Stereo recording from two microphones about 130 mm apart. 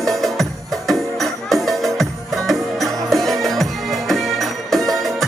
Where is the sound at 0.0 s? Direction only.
Centre (ahead or behind).